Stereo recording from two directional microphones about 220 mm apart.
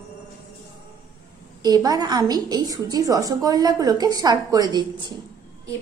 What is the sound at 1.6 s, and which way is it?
A woman's voice, 15° right (ahead or behind).